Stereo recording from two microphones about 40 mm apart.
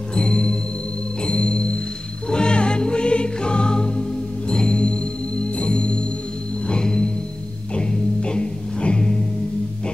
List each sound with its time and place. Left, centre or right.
0.1 s music: left